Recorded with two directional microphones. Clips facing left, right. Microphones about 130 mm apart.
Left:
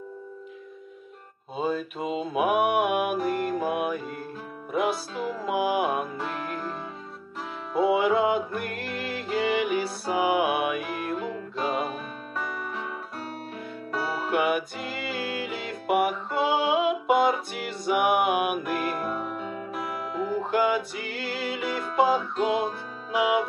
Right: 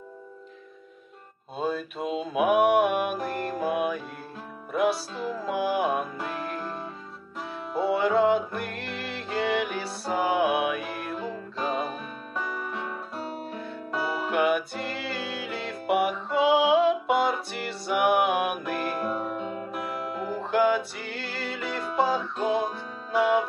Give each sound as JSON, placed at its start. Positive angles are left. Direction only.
{"t": 1.6, "sound": "mantra", "side_deg": 0}
{"t": 4.7, "sound": "music", "side_deg": 5}
{"t": 7.8, "sound": "music", "side_deg": 5}
{"t": 14.3, "sound": "music", "side_deg": 5}